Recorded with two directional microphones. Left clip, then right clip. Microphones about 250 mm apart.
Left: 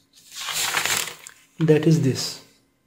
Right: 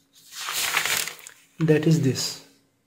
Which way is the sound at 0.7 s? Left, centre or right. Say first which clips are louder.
Even; centre.